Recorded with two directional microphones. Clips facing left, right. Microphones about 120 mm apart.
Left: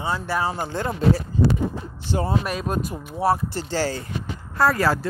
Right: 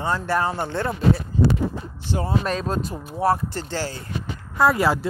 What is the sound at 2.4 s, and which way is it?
Speech, 10° left (ahead or behind).